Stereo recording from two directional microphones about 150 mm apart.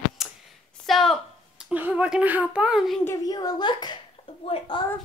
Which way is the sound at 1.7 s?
10° right (ahead or behind).